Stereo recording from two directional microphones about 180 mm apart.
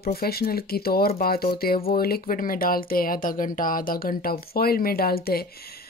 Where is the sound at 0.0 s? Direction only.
60° left (ahead or behind).